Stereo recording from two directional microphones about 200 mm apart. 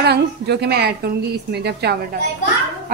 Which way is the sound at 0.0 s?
55° right (ahead or behind).